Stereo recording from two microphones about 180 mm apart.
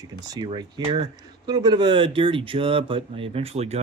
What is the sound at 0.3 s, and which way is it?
Speech, 25° right (ahead or behind).